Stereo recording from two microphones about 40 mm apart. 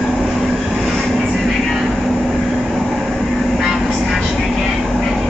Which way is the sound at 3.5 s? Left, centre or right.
Centre.